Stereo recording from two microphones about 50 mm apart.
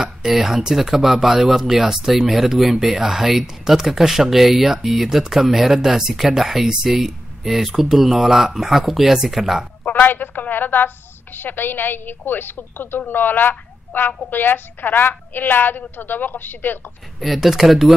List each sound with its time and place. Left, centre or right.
0.0 s speech: centre
9.8 s a woman's voice: left
17.2 s speech: centre